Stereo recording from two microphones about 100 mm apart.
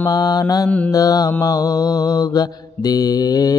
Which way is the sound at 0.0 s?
40° left (ahead or behind).